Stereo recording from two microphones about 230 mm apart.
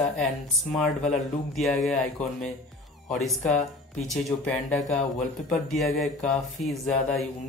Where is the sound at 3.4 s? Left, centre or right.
Left.